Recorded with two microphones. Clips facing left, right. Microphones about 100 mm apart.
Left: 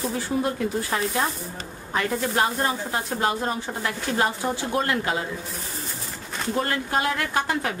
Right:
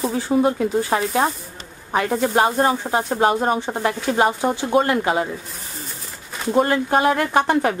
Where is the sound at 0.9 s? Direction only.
40° right (ahead or behind).